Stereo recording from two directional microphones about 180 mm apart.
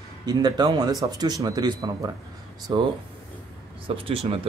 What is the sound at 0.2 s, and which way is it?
A man's voice, 20° right (ahead or behind).